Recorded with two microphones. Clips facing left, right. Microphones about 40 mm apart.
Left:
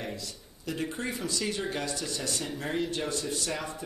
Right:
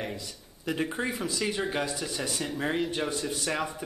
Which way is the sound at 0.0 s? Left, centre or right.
Right.